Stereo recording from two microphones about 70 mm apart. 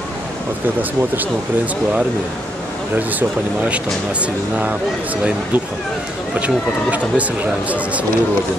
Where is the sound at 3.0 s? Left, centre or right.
Right.